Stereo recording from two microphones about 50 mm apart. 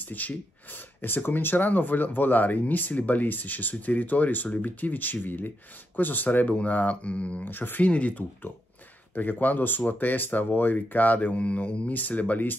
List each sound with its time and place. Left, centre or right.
0.0 s speech: left
7.4 s speech: left
7.8 s speech: left